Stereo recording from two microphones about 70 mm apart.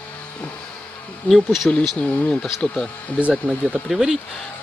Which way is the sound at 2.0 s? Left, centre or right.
Centre.